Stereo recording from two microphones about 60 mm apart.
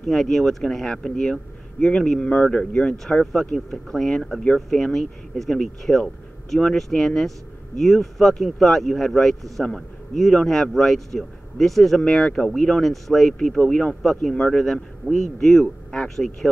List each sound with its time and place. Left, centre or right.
0.0 s speech: centre
3.5 s speech: centre
14.6 s speech: centre